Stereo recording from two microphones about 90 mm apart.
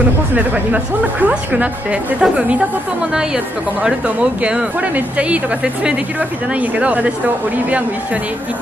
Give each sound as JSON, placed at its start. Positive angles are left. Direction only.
{"t": 0.4, "sound": "speech", "side_deg": -15}